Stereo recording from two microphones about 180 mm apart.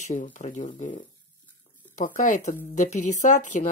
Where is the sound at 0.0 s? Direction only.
45° left (ahead or behind).